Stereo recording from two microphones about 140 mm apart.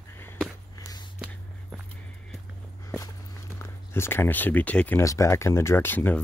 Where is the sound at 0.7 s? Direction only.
30° left (ahead or behind).